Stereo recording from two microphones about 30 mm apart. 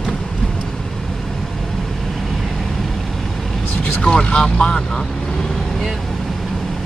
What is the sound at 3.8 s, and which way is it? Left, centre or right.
Speech, left.